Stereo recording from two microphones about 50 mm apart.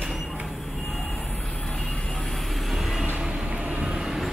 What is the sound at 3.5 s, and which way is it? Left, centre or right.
Vehicle, right.